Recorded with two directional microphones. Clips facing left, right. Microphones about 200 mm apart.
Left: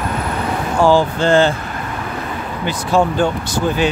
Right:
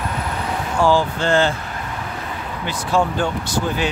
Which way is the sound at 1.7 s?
60° left (ahead or behind).